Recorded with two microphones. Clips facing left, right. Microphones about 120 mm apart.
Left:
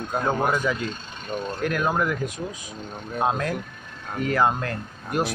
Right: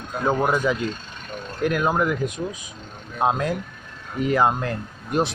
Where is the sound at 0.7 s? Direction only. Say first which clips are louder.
Right 3 dB; 20° right (ahead or behind).